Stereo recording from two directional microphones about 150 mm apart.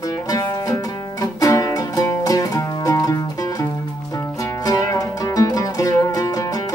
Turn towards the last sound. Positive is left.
turn(degrees=20)  # may be behind; listen again after turning